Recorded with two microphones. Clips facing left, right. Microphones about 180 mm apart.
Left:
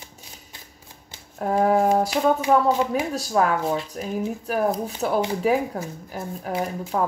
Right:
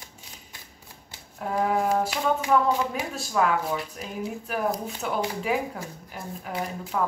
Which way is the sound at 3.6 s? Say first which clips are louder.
Left 5 dB; 25° left (ahead or behind).